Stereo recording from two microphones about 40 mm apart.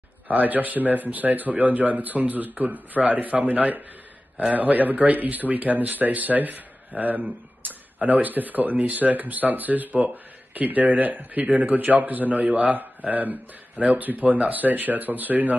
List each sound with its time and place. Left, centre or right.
0.3 s speech: right